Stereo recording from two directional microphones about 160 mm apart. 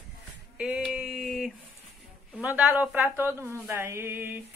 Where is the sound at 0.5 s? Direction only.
5° right (ahead or behind).